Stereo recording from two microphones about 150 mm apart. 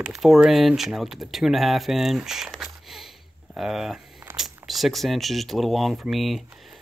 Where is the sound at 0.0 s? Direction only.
Centre (ahead or behind).